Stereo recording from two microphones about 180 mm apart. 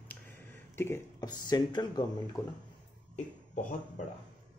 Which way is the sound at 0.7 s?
15° left (ahead or behind).